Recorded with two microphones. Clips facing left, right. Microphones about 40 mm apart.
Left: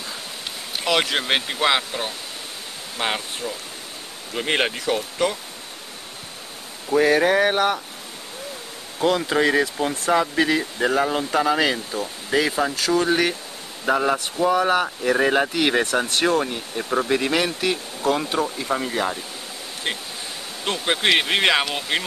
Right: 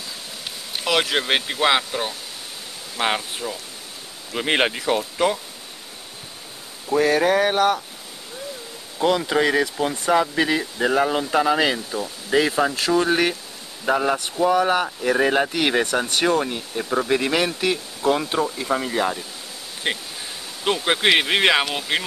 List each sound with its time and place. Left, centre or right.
0.7 s speech: centre
6.9 s speech: centre
9.0 s speech: centre
12.7 s speech: right
13.0 s speech: centre